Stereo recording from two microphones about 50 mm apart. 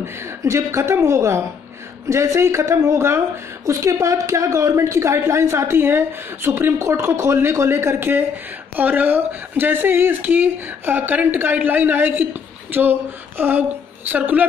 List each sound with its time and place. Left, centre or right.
0.0 s a woman's voice: right
3.6 s a woman's voice: right
5.8 s speech: right
7.1 s a woman's voice: right
8.7 s speech: right